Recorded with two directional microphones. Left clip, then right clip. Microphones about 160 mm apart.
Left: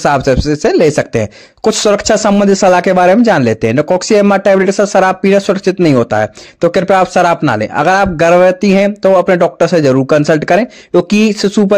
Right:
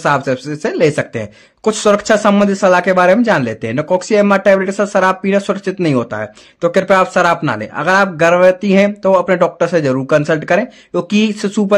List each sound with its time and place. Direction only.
0.0 s speech: 35° left (ahead or behind)